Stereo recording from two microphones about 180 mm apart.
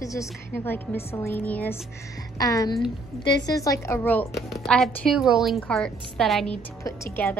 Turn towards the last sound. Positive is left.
turn(degrees=15)  # may be behind; listen again after turning